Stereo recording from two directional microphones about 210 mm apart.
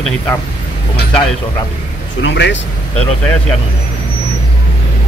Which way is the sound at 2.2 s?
60° left (ahead or behind).